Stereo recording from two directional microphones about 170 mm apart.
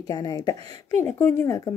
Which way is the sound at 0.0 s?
20° left (ahead or behind).